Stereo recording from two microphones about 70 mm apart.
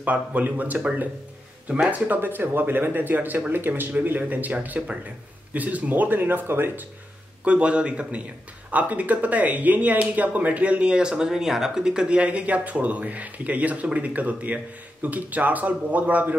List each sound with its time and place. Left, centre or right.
0.0 s a man's voice: right
2.0 s speech: right
7.4 s a man's voice: centre